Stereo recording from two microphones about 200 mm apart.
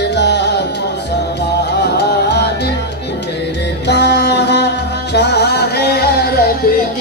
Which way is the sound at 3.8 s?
60° left (ahead or behind).